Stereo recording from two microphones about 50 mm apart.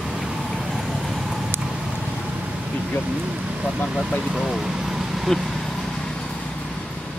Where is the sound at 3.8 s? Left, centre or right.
Centre.